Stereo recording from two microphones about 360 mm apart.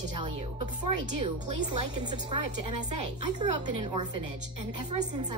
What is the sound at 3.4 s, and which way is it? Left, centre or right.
A woman's voice, centre.